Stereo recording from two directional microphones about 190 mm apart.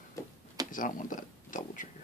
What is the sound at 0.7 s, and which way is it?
Speech, 45° left (ahead or behind).